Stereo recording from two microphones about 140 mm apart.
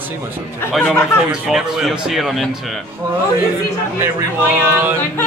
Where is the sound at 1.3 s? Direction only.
5° right (ahead or behind).